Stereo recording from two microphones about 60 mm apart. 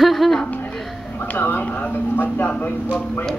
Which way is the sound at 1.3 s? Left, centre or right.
Left.